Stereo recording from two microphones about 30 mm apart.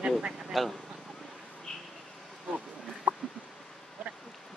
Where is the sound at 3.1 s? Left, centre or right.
Right.